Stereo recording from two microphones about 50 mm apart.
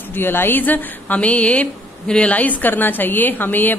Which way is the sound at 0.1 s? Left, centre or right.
Left.